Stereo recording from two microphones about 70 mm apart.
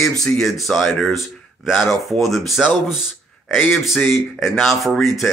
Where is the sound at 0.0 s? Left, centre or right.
Centre.